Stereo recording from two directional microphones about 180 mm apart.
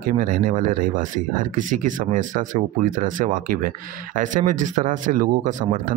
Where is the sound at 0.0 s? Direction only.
50° right (ahead or behind).